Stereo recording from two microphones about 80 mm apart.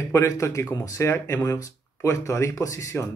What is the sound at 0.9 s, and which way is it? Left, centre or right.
Speech, left.